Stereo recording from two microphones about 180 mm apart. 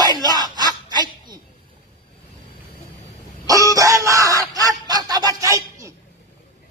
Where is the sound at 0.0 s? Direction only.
25° right (ahead or behind).